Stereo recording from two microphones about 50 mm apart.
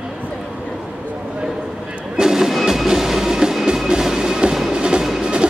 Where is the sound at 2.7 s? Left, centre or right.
Centre.